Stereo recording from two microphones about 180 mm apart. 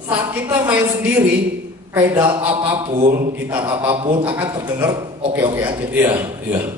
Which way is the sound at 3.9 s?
30° right (ahead or behind).